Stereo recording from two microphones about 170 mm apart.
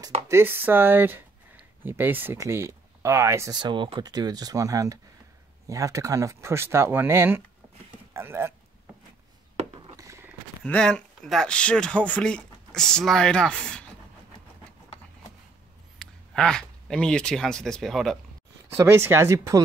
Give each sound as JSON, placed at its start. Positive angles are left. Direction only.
{"t": 0.3, "sound": "speech", "side_deg": -15}
{"t": 9.8, "sound": "a sound", "side_deg": -20}
{"t": 10.6, "sound": "speech", "side_deg": 5}
{"t": 16.0, "sound": "speech", "side_deg": 5}
{"t": 18.7, "sound": "speech", "side_deg": -15}